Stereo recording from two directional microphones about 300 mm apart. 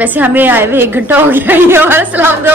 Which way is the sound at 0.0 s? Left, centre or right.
Centre.